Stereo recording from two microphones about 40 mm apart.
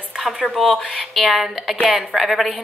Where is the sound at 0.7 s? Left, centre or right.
Centre.